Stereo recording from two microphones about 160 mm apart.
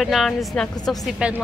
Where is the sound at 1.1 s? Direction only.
10° right (ahead or behind).